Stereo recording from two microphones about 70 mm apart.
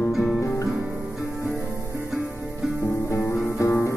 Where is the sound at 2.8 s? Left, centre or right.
Left.